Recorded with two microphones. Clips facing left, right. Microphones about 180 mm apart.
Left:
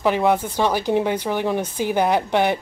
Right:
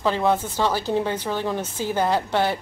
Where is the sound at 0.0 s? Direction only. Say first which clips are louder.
Left 3 dB; 15° left (ahead or behind).